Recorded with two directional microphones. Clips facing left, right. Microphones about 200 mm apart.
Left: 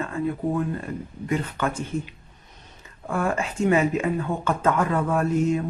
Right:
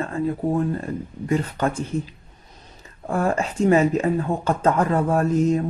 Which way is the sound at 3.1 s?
35° right (ahead or behind).